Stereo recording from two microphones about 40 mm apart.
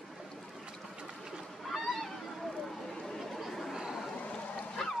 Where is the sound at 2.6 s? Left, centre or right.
Centre.